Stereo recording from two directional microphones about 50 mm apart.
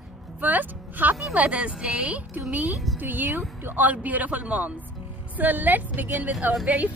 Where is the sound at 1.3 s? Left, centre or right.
Right.